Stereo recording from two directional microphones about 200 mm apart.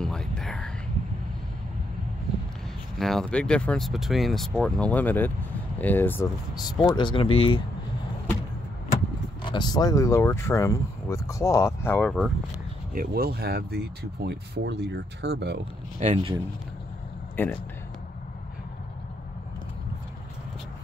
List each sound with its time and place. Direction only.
0.0 s whispering: 5° left (ahead or behind)
3.0 s speech: centre (ahead or behind)
6.5 s speech: 20° left (ahead or behind)
9.4 s speech: 20° left (ahead or behind); by 12.3 s centre (ahead or behind)
12.9 s speech: 50° right (ahead or behind)
16.0 s speech: 30° right (ahead or behind)
17.4 s speech: 10° left (ahead or behind)